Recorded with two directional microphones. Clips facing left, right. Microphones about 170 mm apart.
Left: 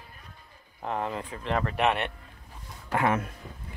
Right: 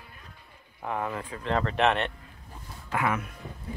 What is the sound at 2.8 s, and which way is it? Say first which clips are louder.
Speech: left 3 dB; 30° left (ahead or behind).